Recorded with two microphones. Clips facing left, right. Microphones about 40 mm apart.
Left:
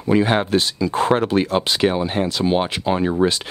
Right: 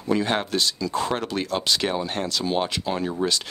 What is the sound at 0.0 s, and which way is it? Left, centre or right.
Speech, left.